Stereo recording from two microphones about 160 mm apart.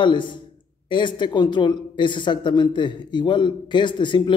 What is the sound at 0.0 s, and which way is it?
A man's voice, 30° left (ahead or behind).